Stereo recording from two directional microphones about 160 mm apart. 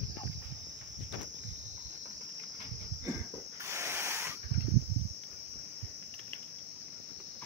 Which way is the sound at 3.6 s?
15° right (ahead or behind).